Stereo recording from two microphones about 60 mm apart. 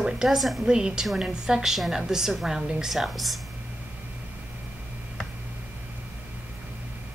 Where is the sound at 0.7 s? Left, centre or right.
Centre.